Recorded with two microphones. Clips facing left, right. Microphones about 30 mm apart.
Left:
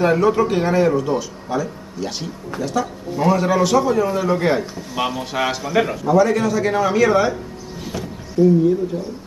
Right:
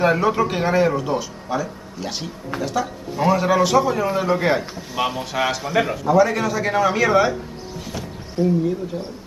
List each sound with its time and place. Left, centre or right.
0.0 s a man's voice: centre
7.8 s a sound: centre
8.4 s speech: right